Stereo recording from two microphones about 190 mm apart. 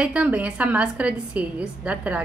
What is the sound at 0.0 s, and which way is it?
A woman's voice, 5° right (ahead or behind).